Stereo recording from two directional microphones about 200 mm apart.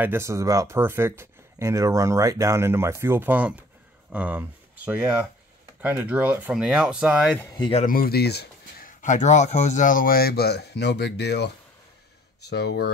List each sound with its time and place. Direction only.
0.0 s speech: 10° right (ahead or behind)
7.3 s speech: 20° left (ahead or behind)
7.8 s speech: 45° left (ahead or behind)